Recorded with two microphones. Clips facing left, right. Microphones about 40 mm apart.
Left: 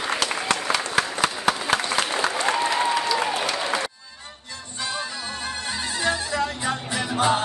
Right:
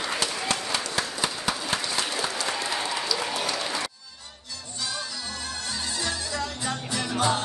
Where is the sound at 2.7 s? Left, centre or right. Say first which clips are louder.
Left 6 dB; left.